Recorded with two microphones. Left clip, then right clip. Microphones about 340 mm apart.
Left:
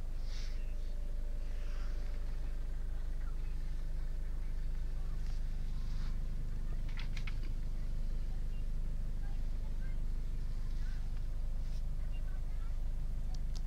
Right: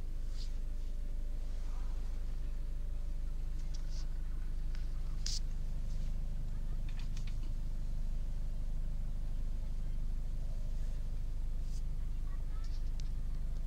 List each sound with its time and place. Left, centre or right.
5.2 s vehicle: right